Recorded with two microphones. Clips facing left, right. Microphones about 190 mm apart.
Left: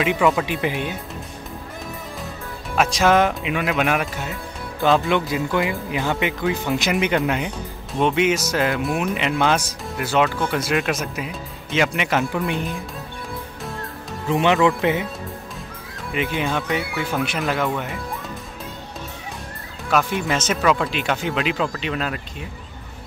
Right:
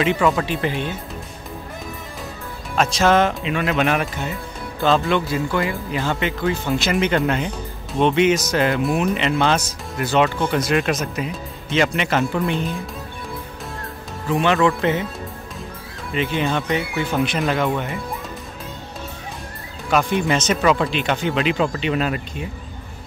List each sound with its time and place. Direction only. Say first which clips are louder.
0.0 s speech: even; 5° left (ahead or behind)
2.7 s speech: even; 10° left (ahead or behind)
5.1 s speech: even; 15° left (ahead or behind); by 12.7 s centre (ahead or behind)
14.3 s speech: even; 20° left (ahead or behind)
16.1 s speech: right 2 dB; 5° left (ahead or behind)
19.9 s speech: right 2 dB; 5° left (ahead or behind)